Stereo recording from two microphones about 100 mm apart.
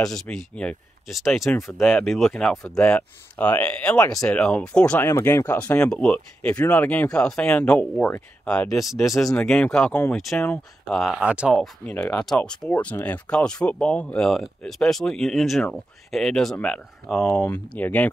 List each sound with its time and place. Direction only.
0.0 s speech: 5° left (ahead or behind)
1.5 s speech: 20° left (ahead or behind)
2.0 s speech: centre (ahead or behind)
5.0 s speech: 25° left (ahead or behind)
5.5 s speech: 15° left (ahead or behind)
11.1 s speech: 10° right (ahead or behind)
11.5 s speech: centre (ahead or behind)
11.9 s speech: 20° left (ahead or behind); by 17.5 s 5° left (ahead or behind)
17.6 s speech: 15° left (ahead or behind)